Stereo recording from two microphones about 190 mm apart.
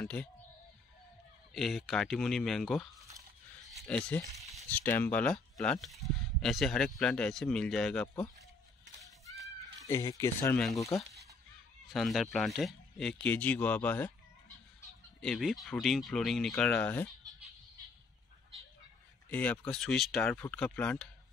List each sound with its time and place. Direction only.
0.0 s speech: 5° left (ahead or behind)
1.5 s speech: centre (ahead or behind)
3.6 s a sound: 5° left (ahead or behind)
4.5 s speech: 5° left (ahead or behind)
9.8 s speech: 15° left (ahead or behind)
11.9 s speech: centre (ahead or behind)
15.2 s speech: centre (ahead or behind)
19.3 s speech: 5° left (ahead or behind)